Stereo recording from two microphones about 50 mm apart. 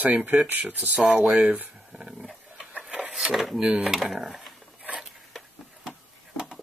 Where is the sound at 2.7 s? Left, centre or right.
Right.